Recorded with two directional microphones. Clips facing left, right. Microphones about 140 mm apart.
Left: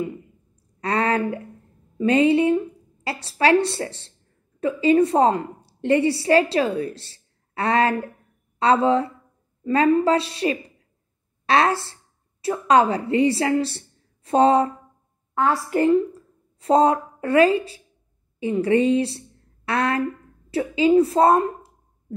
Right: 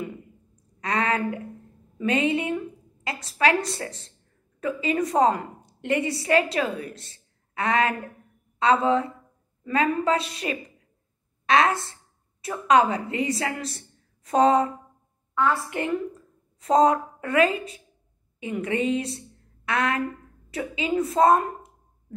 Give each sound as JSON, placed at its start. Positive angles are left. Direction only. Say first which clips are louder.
{"t": 0.7, "sound": "a woman's voice", "louder": "left 4 dB", "side_deg": 30}